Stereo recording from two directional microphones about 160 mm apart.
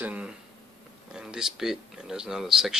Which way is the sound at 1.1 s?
5° right (ahead or behind).